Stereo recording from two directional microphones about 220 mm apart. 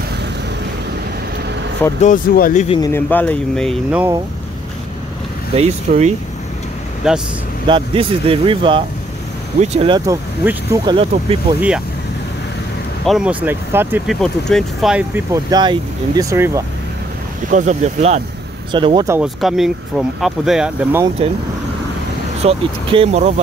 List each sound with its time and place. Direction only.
2.0 s speech: 35° left (ahead or behind)
2.7 s speech: 15° left (ahead or behind); by 4.1 s centre (ahead or behind)
5.6 s speech: 30° right (ahead or behind)
7.0 s speech: centre (ahead or behind)
7.6 s speech: 25° right (ahead or behind)
13.0 s speech: centre (ahead or behind)
17.5 s speech: 35° right (ahead or behind)
18.7 s speech: 20° right (ahead or behind)
19.1 s speech: centre (ahead or behind)
21.2 s speech: 25° right (ahead or behind)
22.4 s speech: 25° right (ahead or behind)